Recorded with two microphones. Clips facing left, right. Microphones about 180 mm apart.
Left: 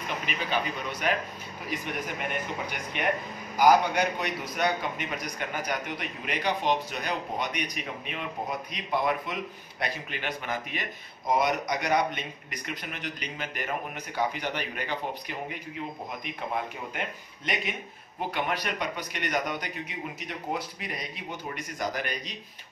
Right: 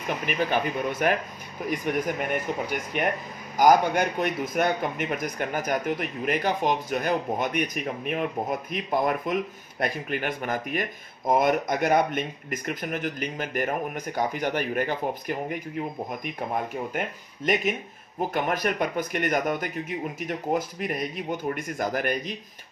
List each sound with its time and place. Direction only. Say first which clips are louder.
0.3 s a man's voice: right 6 dB; 50° right (ahead or behind)
18.3 s a man's voice: right 5 dB; 45° right (ahead or behind)